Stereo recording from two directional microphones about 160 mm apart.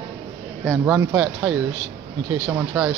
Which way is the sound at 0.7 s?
5° right (ahead or behind).